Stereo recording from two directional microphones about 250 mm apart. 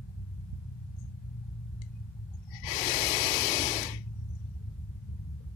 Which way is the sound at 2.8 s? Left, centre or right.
Left.